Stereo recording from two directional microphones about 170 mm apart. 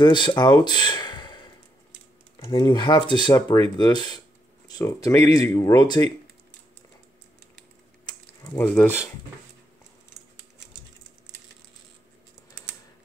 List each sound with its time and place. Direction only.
0.0 s speech: 25° left (ahead or behind)
4.6 s speech: 20° left (ahead or behind)
8.0 s mechanisms: 25° left (ahead or behind)
8.5 s speech: 10° left (ahead or behind)